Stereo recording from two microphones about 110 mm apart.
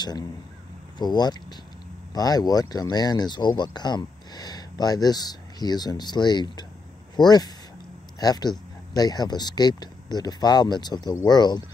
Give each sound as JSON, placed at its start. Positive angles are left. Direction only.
{"t": 0.9, "sound": "speech", "side_deg": 40}